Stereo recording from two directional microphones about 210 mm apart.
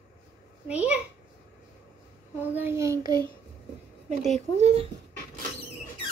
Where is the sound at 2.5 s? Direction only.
10° right (ahead or behind).